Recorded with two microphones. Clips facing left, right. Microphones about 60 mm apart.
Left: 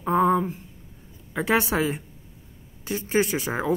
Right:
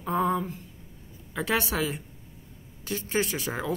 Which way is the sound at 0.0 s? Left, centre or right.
Left.